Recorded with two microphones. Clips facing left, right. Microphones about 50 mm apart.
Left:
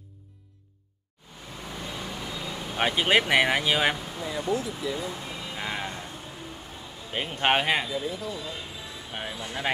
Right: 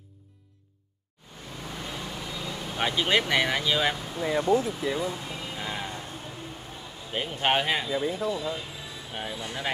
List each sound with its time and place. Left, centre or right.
1.6 s vehicle: centre
2.8 s speech: centre
3.9 s a sound: centre
4.2 s speech: centre
5.0 s speech: centre
5.6 s a sound: centre
7.1 s a man's voice: centre
8.0 s speech: right
9.1 s speech: centre